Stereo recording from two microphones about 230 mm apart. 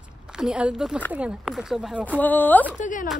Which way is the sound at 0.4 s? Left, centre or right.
Centre.